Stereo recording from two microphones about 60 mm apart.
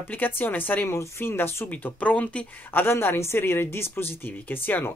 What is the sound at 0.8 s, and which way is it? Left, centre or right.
Speech, left.